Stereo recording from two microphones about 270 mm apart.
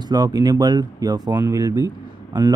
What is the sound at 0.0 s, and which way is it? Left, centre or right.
Speech, centre.